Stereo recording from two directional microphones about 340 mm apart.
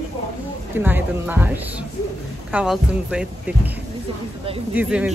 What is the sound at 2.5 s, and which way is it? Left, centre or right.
Speech, centre.